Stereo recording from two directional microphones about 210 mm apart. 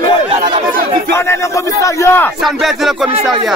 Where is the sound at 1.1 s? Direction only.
15° left (ahead or behind).